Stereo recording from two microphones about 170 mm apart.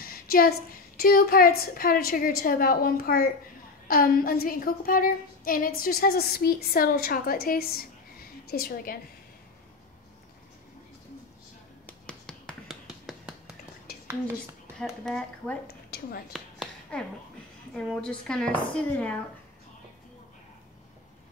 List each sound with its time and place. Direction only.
0.0 s a woman's voice: 60° left (ahead or behind)
11.8 s finger snapping: 5° left (ahead or behind)
14.8 s speech: 5° left (ahead or behind)
15.6 s a woman's voice: 65° left (ahead or behind)
16.3 s a sound: centre (ahead or behind)
17.7 s speech: 5° left (ahead or behind)